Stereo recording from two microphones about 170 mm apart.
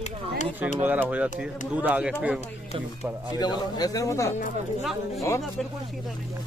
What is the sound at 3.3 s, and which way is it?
Speech, 25° left (ahead or behind).